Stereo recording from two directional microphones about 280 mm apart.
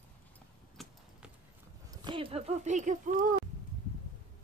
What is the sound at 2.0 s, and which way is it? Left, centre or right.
Speech, centre.